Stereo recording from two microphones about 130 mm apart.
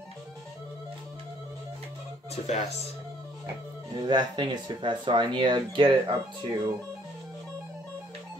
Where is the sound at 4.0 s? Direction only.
35° right (ahead or behind).